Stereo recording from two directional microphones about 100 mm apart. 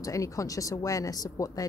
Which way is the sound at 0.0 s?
35° left (ahead or behind).